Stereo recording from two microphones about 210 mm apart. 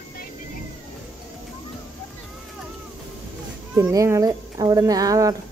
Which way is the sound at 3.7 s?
15° right (ahead or behind).